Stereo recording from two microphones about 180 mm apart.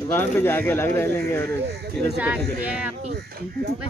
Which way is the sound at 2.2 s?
5° right (ahead or behind).